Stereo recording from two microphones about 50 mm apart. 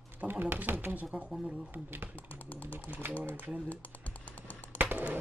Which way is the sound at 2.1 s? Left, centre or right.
Left.